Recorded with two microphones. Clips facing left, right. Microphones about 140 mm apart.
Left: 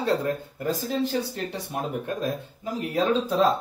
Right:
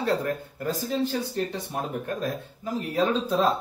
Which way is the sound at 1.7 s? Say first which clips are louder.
Left 2 dB; 15° left (ahead or behind).